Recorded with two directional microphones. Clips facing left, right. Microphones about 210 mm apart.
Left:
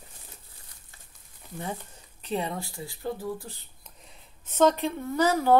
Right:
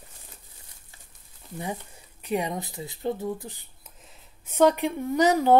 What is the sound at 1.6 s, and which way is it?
Speech, 10° right (ahead or behind).